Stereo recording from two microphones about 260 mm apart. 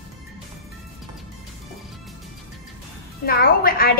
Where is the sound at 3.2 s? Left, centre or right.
Left.